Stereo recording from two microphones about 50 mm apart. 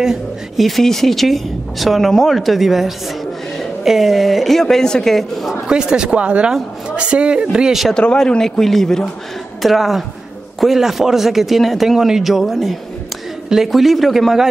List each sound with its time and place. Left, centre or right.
0.0 s speech: centre
0.7 s speech: centre
5.7 s speech: centre
7.9 s a man's voice: centre